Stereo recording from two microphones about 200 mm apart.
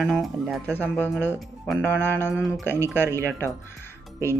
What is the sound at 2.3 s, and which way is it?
Speech, 5° right (ahead or behind).